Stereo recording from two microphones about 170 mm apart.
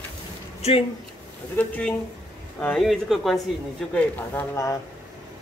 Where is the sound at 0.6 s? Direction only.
40° left (ahead or behind).